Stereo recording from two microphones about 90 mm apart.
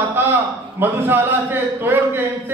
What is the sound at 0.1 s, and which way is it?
A man's voice, 25° right (ahead or behind).